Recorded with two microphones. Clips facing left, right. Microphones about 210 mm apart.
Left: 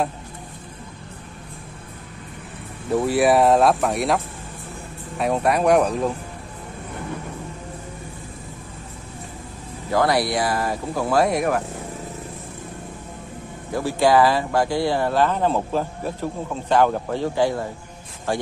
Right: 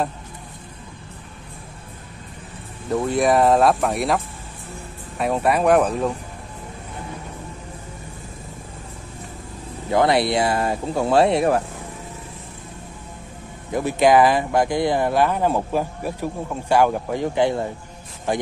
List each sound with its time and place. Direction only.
3.1 s speech: 5° left (ahead or behind)
9.8 s speech: 25° right (ahead or behind)
13.7 s speech: 20° right (ahead or behind)